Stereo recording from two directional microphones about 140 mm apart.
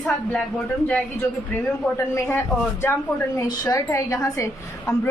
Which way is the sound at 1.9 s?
15° left (ahead or behind).